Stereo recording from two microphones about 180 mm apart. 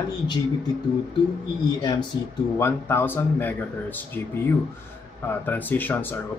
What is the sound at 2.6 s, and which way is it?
Speech, 10° left (ahead or behind).